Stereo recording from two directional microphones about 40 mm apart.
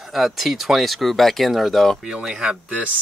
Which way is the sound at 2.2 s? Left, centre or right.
Centre.